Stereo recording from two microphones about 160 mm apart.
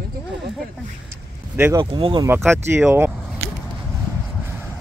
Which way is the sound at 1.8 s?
30° right (ahead or behind).